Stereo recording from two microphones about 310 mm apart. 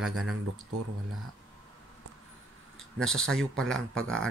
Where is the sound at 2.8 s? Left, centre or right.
Centre.